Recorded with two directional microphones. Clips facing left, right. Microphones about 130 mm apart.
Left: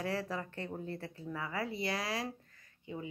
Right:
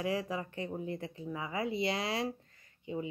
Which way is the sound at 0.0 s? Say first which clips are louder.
Right 3 dB; 15° right (ahead or behind).